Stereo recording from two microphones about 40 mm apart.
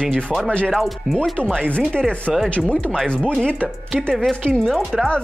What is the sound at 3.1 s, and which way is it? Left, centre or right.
Speech, left.